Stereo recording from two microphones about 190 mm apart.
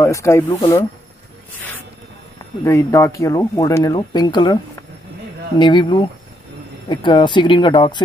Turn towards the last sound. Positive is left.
turn(degrees=25)  # may be behind; listen again after turning